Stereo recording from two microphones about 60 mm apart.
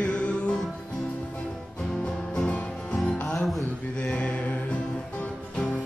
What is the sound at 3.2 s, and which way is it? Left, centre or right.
Music, centre.